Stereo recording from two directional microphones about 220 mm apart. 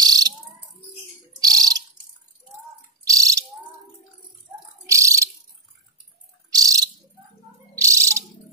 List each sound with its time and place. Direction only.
0.0 s bird: 15° right (ahead or behind)
1.4 s bird: 15° right (ahead or behind)
3.1 s bird: 15° right (ahead or behind)
4.8 s bird: 15° right (ahead or behind)
6.5 s bird: 15° right (ahead or behind)
7.7 s cat: 15° right (ahead or behind)